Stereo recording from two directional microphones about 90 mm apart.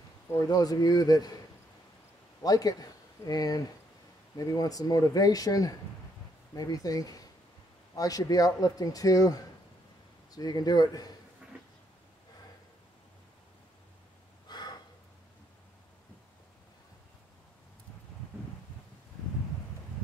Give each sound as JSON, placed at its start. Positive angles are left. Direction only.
{"t": 0.3, "sound": "speech", "side_deg": 40}
{"t": 2.4, "sound": "speech", "side_deg": 45}
{"t": 14.5, "sound": "a sound", "side_deg": 50}